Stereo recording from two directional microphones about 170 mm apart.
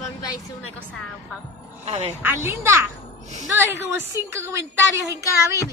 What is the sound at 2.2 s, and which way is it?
Speech, 15° right (ahead or behind).